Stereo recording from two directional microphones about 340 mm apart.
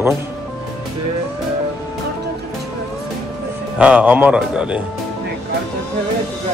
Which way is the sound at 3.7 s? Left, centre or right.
Centre.